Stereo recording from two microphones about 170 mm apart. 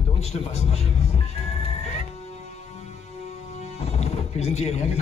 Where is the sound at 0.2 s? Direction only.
40° left (ahead or behind).